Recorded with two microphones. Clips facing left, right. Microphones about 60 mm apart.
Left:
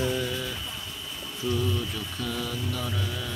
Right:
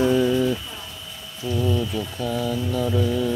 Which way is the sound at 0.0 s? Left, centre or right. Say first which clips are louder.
Right 10 dB; right.